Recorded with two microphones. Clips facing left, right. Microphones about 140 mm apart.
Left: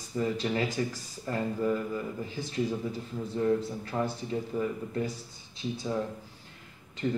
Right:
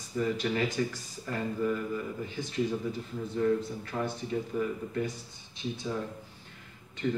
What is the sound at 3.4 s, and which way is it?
Speech, 25° left (ahead or behind).